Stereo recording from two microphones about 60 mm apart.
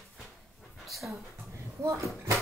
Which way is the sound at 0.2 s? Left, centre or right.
Centre.